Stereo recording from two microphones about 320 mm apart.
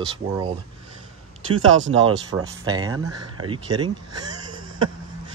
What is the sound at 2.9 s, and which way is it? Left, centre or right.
Speech, right.